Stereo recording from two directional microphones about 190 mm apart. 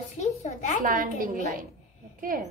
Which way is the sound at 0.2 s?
35° left (ahead or behind).